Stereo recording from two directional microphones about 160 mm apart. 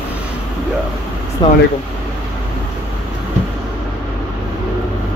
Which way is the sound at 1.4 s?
25° left (ahead or behind).